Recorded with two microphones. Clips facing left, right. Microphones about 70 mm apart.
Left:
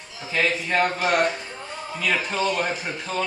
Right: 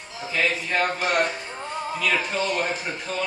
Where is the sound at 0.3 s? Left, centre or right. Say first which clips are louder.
Left 1 dB; centre.